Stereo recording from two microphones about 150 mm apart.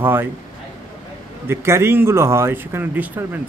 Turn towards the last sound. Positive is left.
turn(degrees=-15)  # may be behind; listen again after turning